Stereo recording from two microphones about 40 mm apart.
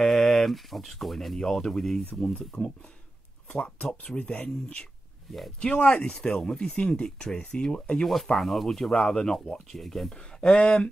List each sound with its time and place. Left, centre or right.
0.0 s speech: centre
2.3 s speech: left
4.2 s speech: left
5.6 s speech: left
6.7 s speech: left
7.2 s speech: centre
8.0 s speech: centre
10.5 s speech: left